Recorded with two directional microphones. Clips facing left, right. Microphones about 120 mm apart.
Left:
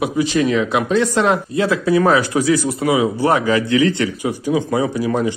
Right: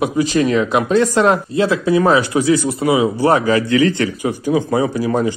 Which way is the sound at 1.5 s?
25° right (ahead or behind).